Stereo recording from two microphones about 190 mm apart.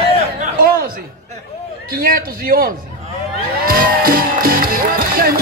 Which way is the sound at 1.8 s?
50° right (ahead or behind).